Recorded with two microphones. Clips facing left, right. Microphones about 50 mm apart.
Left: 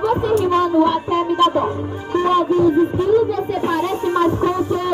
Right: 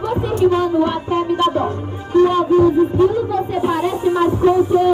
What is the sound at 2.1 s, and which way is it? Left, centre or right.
Music, left.